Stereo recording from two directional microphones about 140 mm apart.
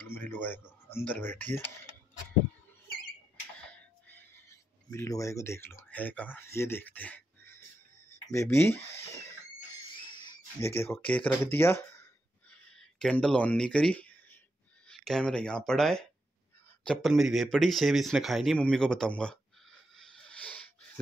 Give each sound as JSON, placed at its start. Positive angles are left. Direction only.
{"t": 0.0, "sound": "speech", "side_deg": 15}
{"t": 4.9, "sound": "speech", "side_deg": 20}
{"t": 8.3, "sound": "speech", "side_deg": 20}
{"t": 9.8, "sound": "a sound", "side_deg": 35}
{"t": 10.6, "sound": "speech", "side_deg": 15}
{"t": 12.7, "sound": "a man's voice", "side_deg": 5}